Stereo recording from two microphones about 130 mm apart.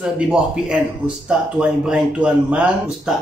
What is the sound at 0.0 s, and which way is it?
A man's voice, 5° right (ahead or behind).